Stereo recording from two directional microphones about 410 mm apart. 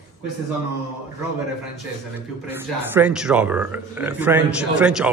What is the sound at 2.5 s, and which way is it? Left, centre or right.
A man's voice, centre.